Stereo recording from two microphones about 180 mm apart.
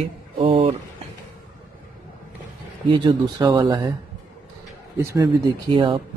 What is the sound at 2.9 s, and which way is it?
Speech, 25° right (ahead or behind).